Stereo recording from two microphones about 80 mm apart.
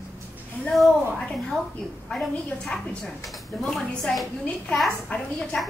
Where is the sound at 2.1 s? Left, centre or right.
Centre.